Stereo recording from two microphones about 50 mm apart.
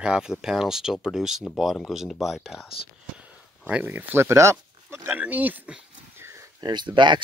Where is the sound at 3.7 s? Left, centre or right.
Right.